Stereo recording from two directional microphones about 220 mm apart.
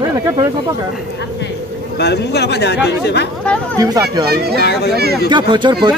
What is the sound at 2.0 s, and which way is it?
Speech, 50° left (ahead or behind).